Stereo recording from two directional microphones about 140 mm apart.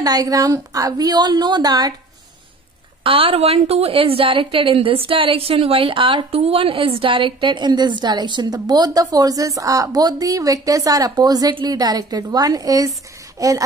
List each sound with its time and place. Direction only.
0.0 s speech: 25° right (ahead or behind)
3.0 s a woman's voice: 40° right (ahead or behind); by 13.5 s 25° right (ahead or behind)